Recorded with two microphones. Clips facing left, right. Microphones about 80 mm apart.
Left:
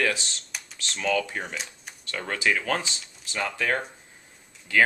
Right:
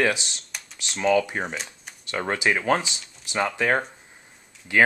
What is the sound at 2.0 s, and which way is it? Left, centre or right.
Speech, right.